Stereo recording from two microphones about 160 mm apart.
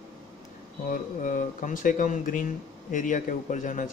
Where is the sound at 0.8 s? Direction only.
55° left (ahead or behind).